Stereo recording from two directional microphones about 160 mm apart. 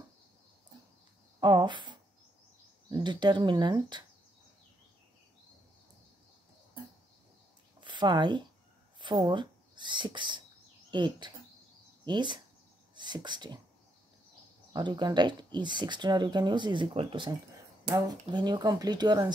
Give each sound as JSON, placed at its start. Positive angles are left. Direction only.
{"t": 1.4, "sound": "speech", "side_deg": -25}
{"t": 7.8, "sound": "speech", "side_deg": -30}
{"t": 14.7, "sound": "speech", "side_deg": -25}